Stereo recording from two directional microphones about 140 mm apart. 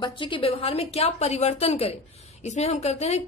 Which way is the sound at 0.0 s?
35° left (ahead or behind).